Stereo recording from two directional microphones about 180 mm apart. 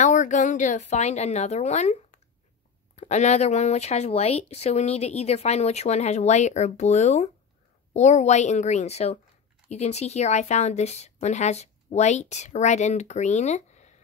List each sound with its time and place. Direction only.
0.0 s speech: 40° left (ahead or behind)